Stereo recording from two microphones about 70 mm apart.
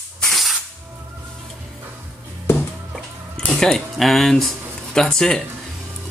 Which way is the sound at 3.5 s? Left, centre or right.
Centre.